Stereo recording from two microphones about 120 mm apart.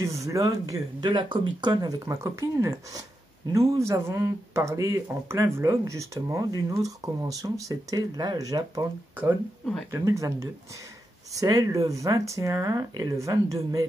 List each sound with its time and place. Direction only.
0.0 s speech: 25° right (ahead or behind)
1.1 s speech: 45° right (ahead or behind)
9.8 s speech: 25° right (ahead or behind)